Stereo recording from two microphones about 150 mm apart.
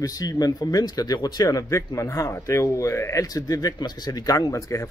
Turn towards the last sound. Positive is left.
turn(degrees=20)  # may be behind; listen again after turning